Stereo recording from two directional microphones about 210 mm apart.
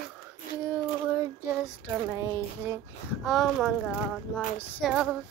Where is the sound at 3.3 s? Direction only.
Centre (ahead or behind).